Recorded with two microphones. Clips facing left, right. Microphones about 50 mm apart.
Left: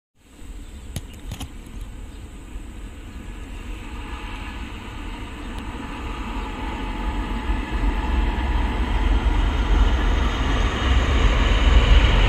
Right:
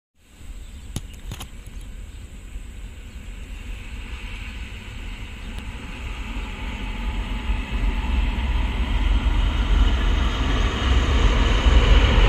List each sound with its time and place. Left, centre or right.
3.8 s vehicle: centre
9.7 s vehicle: left
11.3 s vehicle: centre